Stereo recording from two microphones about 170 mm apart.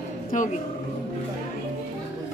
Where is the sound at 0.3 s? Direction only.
50° left (ahead or behind).